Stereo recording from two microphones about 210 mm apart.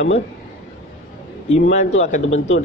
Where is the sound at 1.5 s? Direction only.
30° left (ahead or behind).